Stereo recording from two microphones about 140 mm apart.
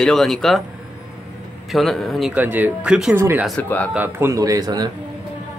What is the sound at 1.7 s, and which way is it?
Speech, centre (ahead or behind).